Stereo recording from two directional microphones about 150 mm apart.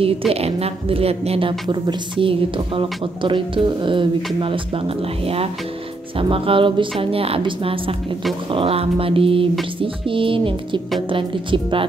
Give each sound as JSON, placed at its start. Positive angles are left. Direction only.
{"t": 0.3, "sound": "a woman's voice", "side_deg": -45}